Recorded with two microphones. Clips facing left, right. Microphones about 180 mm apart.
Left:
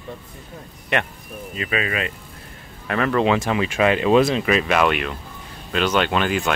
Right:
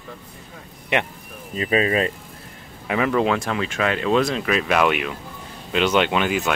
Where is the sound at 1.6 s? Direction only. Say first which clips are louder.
Right 5 dB; 35° right (ahead or behind).